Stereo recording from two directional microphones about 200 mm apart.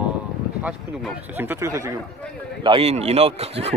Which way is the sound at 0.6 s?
10° right (ahead or behind).